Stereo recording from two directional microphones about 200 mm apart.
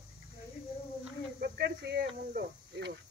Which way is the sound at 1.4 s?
55° right (ahead or behind).